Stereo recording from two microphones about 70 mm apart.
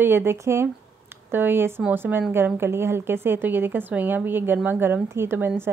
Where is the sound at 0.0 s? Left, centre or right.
Right.